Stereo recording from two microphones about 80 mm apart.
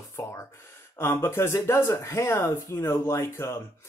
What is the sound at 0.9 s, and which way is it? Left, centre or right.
Speech, left.